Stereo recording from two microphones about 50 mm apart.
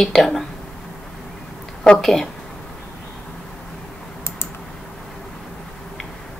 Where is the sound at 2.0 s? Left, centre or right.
Centre.